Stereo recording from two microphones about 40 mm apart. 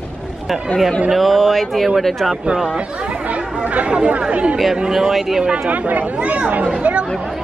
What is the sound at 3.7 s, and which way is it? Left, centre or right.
Speech, right.